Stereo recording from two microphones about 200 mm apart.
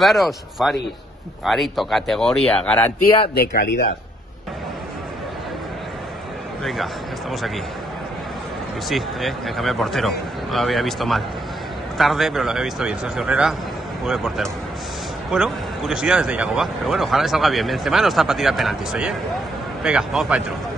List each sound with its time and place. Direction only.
0.0 s speech: centre (ahead or behind)
3.3 s speech: 50° left (ahead or behind)
6.6 s speech: centre (ahead or behind)
8.8 s speech: centre (ahead or behind)